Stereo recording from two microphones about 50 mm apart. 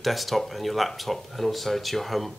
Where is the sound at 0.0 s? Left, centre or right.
Centre.